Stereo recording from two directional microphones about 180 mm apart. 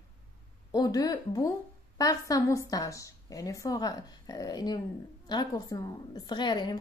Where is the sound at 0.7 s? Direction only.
20° left (ahead or behind).